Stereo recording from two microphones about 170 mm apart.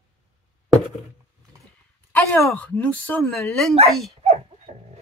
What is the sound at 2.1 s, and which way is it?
A woman's voice, 10° left (ahead or behind).